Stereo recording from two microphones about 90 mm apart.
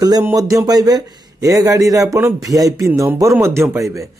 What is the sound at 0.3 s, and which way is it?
Speech, 40° right (ahead or behind).